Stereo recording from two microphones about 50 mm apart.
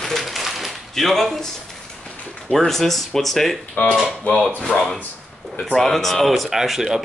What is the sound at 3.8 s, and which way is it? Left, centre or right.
Speech, left.